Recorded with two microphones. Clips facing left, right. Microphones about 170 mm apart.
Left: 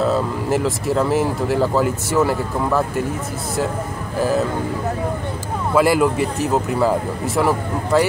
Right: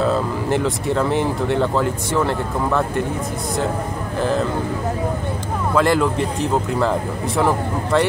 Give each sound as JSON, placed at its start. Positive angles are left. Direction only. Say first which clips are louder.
{"t": 0.0, "sound": "speech", "louder": "even", "side_deg": 0}
{"t": 4.2, "sound": "speech", "louder": "left 2 dB", "side_deg": 5}
{"t": 5.8, "sound": "speech", "louder": "left 2 dB", "side_deg": 10}